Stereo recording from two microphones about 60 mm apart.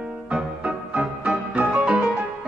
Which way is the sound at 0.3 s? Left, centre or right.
Right.